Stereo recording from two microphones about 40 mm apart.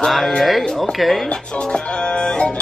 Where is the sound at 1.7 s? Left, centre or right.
Left.